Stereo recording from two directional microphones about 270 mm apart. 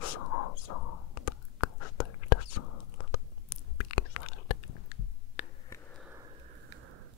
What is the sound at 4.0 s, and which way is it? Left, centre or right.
Whispering, left.